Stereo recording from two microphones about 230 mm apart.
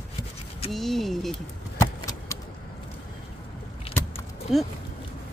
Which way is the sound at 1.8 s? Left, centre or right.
Centre.